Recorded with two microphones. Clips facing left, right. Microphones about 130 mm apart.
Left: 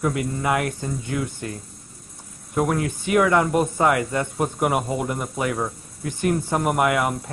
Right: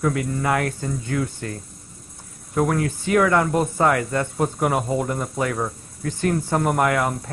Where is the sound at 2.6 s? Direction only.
20° left (ahead or behind).